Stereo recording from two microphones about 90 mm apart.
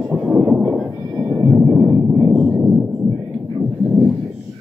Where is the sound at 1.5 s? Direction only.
5° right (ahead or behind).